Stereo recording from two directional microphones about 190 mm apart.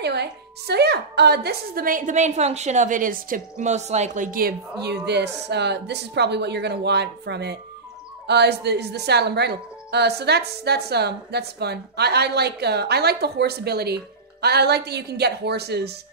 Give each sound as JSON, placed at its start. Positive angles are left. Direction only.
{"t": 0.0, "sound": "a woman's voice", "side_deg": -60}